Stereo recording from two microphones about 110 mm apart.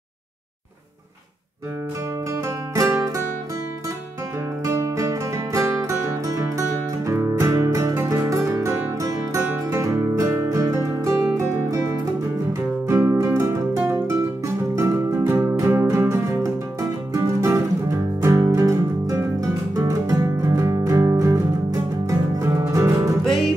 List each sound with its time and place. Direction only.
2.7 s music: 30° right (ahead or behind)
4.6 s music: 30° right (ahead or behind)
23.2 s music: 5° left (ahead or behind)